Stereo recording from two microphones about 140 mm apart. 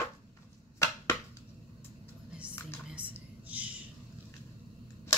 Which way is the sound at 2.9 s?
10° right (ahead or behind).